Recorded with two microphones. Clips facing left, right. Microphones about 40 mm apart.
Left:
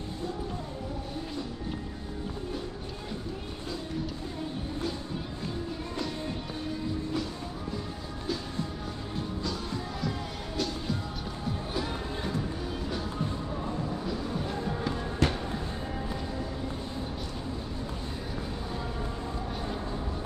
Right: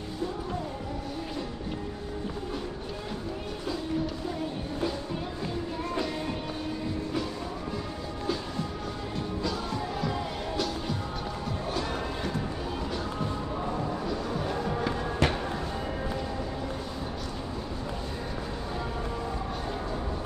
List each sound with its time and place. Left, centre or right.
14.5 s music: centre